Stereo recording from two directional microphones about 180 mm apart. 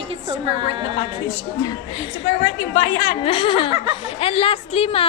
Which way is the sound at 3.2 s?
30° left (ahead or behind).